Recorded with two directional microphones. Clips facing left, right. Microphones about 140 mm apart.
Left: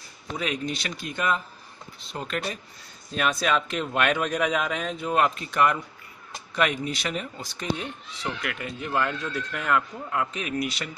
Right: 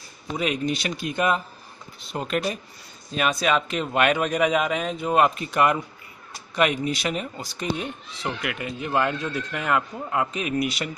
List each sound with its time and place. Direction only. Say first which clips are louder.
0.4 s speech: right 4 dB; 15° right (ahead or behind)
3.2 s speech: right 2 dB; 5° right (ahead or behind)